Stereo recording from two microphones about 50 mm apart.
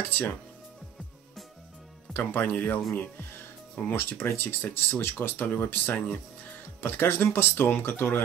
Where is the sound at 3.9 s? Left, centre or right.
Left.